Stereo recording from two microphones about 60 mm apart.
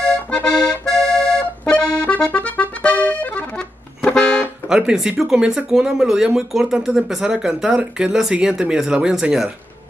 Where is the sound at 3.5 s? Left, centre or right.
Centre.